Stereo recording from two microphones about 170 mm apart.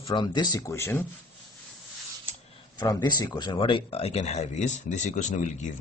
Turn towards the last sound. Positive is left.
turn(degrees=45)  # may be behind; listen again after turning